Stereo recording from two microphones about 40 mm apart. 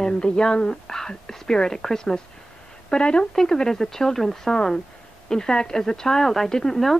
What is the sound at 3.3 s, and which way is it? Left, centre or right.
Speech, centre.